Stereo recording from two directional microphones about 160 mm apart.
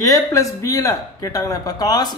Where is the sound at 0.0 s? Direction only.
20° left (ahead or behind).